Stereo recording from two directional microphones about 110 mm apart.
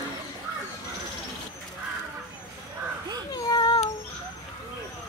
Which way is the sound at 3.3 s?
40° left (ahead or behind).